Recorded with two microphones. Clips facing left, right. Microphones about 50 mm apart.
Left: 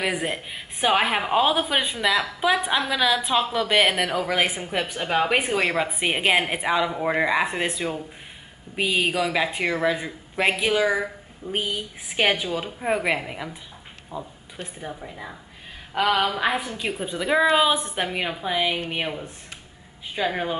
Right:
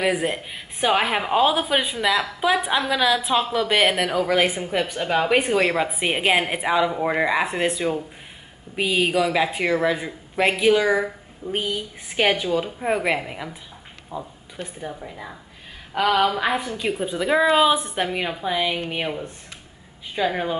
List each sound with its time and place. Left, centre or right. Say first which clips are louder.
0.0 s speech: right 4 dB; centre